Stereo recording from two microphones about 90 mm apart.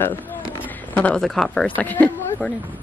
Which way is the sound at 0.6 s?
15° left (ahead or behind).